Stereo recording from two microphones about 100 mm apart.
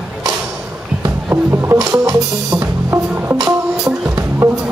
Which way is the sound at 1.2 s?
25° right (ahead or behind).